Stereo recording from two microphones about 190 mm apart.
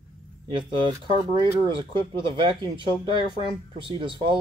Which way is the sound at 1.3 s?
25° right (ahead or behind).